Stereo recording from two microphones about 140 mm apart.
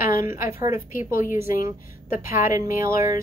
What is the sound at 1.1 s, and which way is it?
Speech, 65° left (ahead or behind).